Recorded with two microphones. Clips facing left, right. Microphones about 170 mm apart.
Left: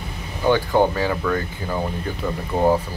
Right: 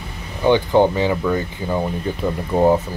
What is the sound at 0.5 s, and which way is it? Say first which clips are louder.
Speech: right 3 dB; 20° right (ahead or behind).